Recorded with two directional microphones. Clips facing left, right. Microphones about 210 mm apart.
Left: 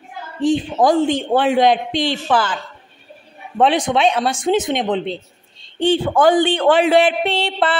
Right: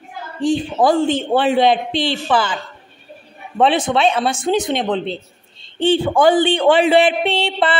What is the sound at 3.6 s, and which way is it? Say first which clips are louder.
A man's voice: even; 10° left (ahead or behind).